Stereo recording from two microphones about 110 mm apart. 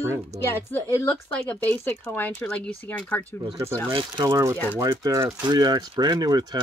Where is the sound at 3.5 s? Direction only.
25° right (ahead or behind).